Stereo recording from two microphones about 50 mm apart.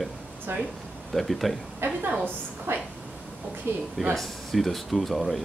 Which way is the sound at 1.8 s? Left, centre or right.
Right.